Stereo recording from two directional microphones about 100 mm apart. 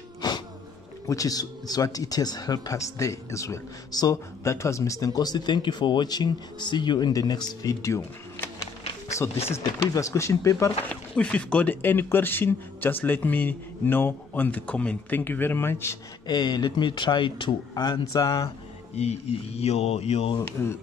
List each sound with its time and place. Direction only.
0.2 s a sound: 40° left (ahead or behind)
1.0 s a man's voice: 35° left (ahead or behind)
7.8 s a sound: 30° left (ahead or behind)
9.8 s a man's voice: 35° left (ahead or behind)
10.9 s speech: 10° left (ahead or behind)
16.3 s speech: 45° left (ahead or behind)
17.8 s a man's voice: 40° left (ahead or behind)
18.9 s speech: 90° left
20.6 s speech: 25° left (ahead or behind)